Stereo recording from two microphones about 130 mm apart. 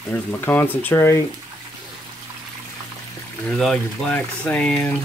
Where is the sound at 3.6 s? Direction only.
10° left (ahead or behind).